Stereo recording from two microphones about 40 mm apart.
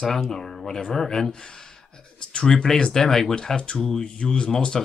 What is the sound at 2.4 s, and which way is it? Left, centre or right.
Speech, centre.